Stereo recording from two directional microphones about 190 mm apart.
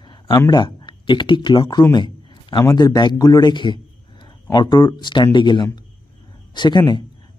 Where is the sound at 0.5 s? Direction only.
20° left (ahead or behind).